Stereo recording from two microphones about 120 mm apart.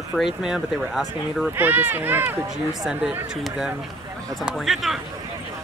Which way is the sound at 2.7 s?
5° right (ahead or behind).